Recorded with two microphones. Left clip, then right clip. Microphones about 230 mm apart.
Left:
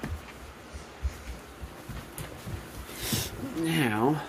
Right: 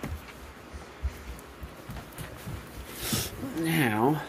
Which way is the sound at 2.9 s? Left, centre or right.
Centre.